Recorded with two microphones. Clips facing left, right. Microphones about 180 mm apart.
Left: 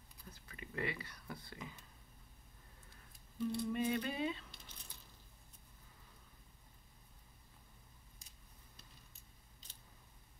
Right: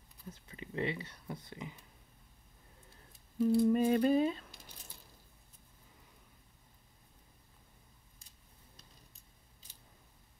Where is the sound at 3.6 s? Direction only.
40° right (ahead or behind).